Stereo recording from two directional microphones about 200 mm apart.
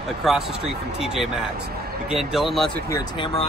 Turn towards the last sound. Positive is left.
turn(degrees=25)  # may be behind; listen again after turning